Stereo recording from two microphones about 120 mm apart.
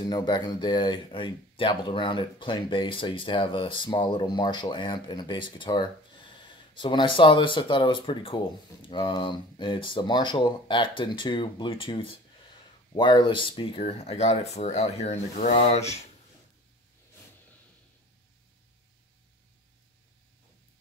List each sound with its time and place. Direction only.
0.1 s speech: 35° left (ahead or behind); by 15.5 s 70° left (ahead or behind)
15.5 s speech: 60° left (ahead or behind)